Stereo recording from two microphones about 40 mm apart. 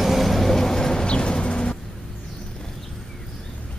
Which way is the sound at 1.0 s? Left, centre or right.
Left.